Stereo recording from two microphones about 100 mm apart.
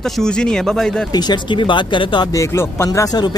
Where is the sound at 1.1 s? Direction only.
45° left (ahead or behind).